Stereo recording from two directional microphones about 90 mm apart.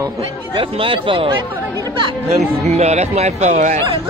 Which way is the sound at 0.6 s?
75° right (ahead or behind).